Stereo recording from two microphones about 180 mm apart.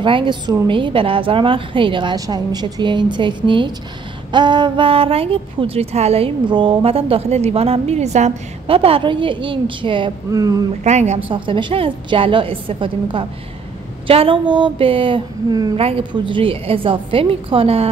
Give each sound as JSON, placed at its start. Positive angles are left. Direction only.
{"t": 0.0, "sound": "a woman's voice", "side_deg": -25}
{"t": 10.8, "sound": "a woman's voice", "side_deg": -40}
{"t": 11.2, "sound": "speech", "side_deg": -25}